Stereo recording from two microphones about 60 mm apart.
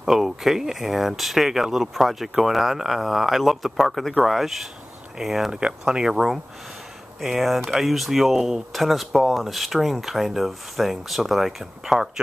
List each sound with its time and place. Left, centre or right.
0.0 s speech: centre
5.6 s speech: centre